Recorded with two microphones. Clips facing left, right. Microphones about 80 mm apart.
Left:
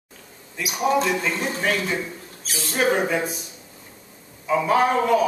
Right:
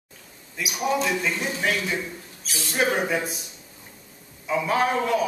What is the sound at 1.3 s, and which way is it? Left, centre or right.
Speech, left.